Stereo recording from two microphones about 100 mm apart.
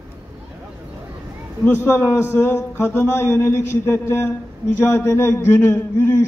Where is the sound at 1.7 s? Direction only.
25° left (ahead or behind).